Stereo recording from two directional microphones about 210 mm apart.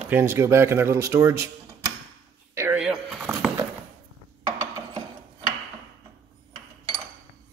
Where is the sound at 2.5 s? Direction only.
15° right (ahead or behind).